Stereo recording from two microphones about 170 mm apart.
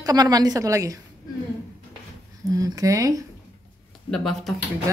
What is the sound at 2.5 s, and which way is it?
Speech, 20° right (ahead or behind).